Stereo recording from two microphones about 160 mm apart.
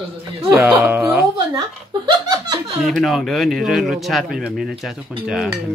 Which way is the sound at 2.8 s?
Centre (ahead or behind).